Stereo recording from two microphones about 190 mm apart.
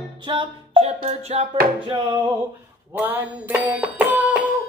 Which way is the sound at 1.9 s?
25° right (ahead or behind).